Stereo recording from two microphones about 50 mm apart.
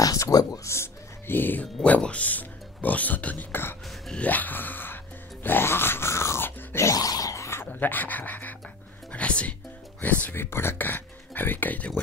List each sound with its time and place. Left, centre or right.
0.2 s speech: left
1.2 s speech: left
1.9 s speech: left
4.2 s music: left
6.8 s a sound: left
7.6 s speech: left
9.1 s music: left
10.0 s speech: left
10.3 s speech: left